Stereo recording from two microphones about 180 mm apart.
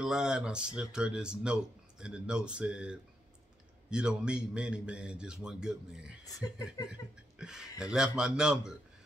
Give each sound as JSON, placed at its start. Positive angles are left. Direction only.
{"t": 0.0, "sound": "speech", "side_deg": -5}
{"t": 6.2, "sound": "speech", "side_deg": 20}
{"t": 6.9, "sound": "laughter", "side_deg": -5}
{"t": 7.8, "sound": "speech", "side_deg": -5}